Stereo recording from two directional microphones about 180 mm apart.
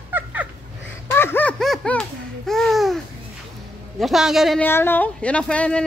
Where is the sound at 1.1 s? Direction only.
10° left (ahead or behind).